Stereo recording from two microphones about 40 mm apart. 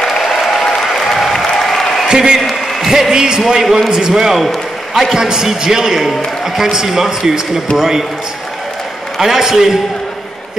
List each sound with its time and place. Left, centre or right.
0.0 s applause: centre
0.7 s applause: centre
1.0 s applause: centre
2.0 s a man's voice: centre
4.3 s a man's voice: centre
9.2 s a man's voice: centre